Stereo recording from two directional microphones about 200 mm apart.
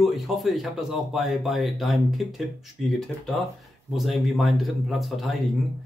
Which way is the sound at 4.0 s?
Centre (ahead or behind).